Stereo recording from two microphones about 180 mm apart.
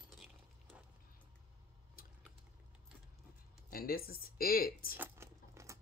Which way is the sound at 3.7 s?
55° left (ahead or behind).